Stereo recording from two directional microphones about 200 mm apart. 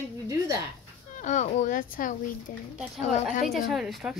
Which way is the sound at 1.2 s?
35° left (ahead or behind).